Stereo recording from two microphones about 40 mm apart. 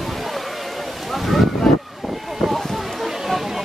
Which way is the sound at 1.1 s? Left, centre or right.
Centre.